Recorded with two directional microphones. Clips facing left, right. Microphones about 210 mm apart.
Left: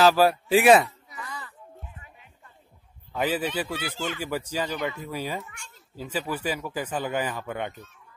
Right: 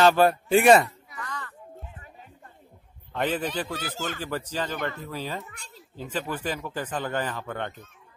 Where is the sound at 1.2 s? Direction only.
10° left (ahead or behind).